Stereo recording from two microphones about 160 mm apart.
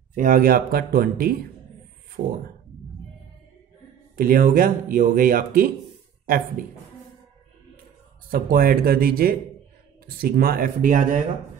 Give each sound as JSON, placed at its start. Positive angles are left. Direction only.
{"t": 0.1, "sound": "speech", "side_deg": -55}
{"t": 4.2, "sound": "speech", "side_deg": -65}
{"t": 8.3, "sound": "speech", "side_deg": -65}